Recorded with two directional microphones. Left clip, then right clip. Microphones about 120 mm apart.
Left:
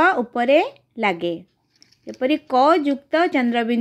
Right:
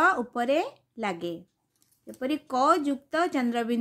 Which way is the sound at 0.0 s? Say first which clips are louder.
Left 6 dB; 20° left (ahead or behind).